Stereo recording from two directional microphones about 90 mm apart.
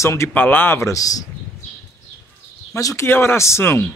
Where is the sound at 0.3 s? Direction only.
20° left (ahead or behind); by 1.2 s 40° left (ahead or behind).